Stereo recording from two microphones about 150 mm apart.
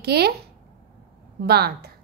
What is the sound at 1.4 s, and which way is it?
Speech, 90° right.